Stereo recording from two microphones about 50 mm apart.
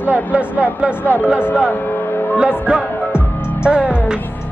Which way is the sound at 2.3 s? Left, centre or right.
Right.